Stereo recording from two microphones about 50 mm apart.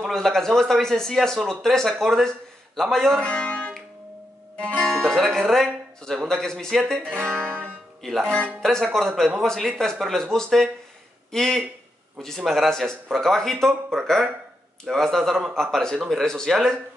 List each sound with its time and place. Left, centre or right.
0.1 s a man's voice: centre
3.2 s music: left; by 6.1 s centre
6.2 s a man's voice: centre
7.0 s music: centre
8.0 s a man's voice: centre